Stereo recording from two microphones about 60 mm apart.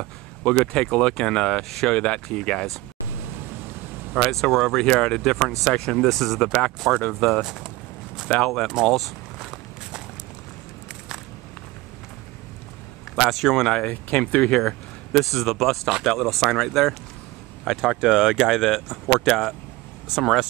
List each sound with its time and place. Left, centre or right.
0.5 s speech: centre
4.1 s speech: centre
7.0 s speech: centre
7.4 s speech: centre
8.5 s speech: centre
8.8 s walk: centre
13.2 s speech: centre
13.8 s speech: left; by 16.9 s centre
17.7 s speech: centre